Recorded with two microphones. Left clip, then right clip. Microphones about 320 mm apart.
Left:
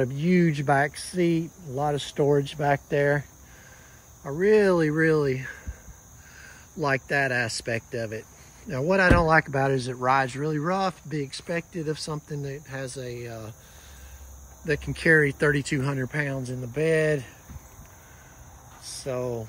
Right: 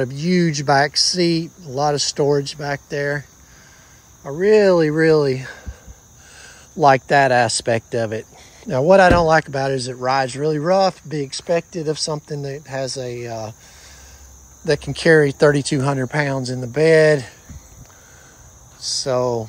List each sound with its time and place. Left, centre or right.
0.0 s speech: centre
14.6 s speech: centre
18.9 s speech: centre